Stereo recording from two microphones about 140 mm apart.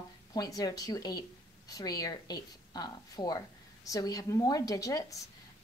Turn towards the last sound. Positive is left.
turn(degrees=25)  # may be behind; listen again after turning